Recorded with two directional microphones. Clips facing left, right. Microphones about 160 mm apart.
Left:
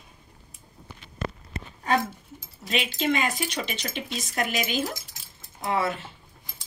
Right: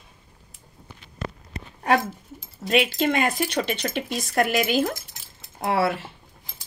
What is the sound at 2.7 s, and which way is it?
Speech, 55° right (ahead or behind).